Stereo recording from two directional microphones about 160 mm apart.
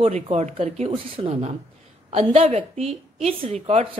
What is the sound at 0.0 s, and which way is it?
A woman's voice, 40° right (ahead or behind).